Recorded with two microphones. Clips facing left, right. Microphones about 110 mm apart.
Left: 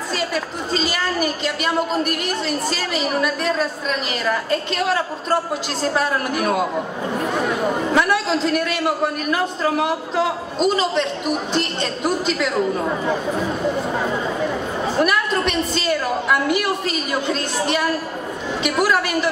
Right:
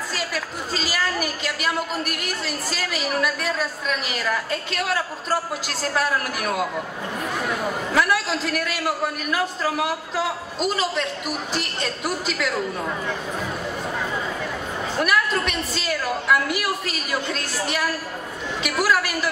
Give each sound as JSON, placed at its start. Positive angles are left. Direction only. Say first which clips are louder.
{"t": 0.1, "sound": "a man's voice", "louder": "left 8 dB", "side_deg": 0}
{"t": 6.6, "sound": "speech", "louder": "left 4 dB", "side_deg": 25}
{"t": 7.9, "sound": "a woman's voice", "louder": "left 1 dB", "side_deg": 0}
{"t": 12.8, "sound": "speech", "louder": "left 6 dB", "side_deg": 20}
{"t": 13.9, "sound": "a sound", "louder": "left 5 dB", "side_deg": 25}
{"t": 15.0, "sound": "a woman's voice", "louder": "left 2 dB", "side_deg": 0}